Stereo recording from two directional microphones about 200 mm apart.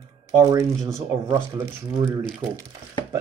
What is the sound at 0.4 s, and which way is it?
Speech, 15° right (ahead or behind).